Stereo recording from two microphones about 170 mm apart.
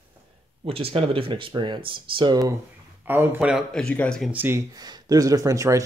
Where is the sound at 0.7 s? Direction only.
35° right (ahead or behind).